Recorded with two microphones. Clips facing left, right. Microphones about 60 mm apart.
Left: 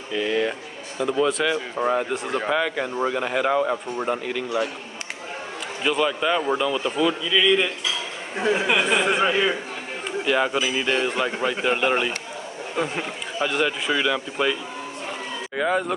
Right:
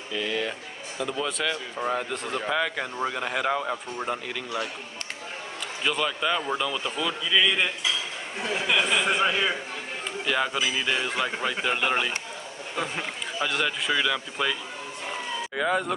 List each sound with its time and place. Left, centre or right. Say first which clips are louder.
0.1 s speech: left 6 dB; centre
2.5 s speech: left 3 dB; centre
5.9 s speech: left 5 dB; centre
7.2 s speech: left 1 dB; centre
8.4 s speech: left 5 dB; left
9.0 s speech: left 4 dB; centre